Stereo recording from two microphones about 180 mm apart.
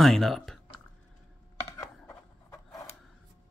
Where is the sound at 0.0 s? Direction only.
Centre (ahead or behind).